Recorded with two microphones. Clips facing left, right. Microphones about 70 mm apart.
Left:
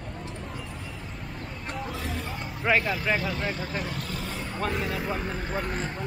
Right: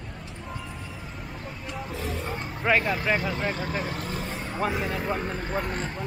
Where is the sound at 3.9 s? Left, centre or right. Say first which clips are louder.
Right 2 dB; right.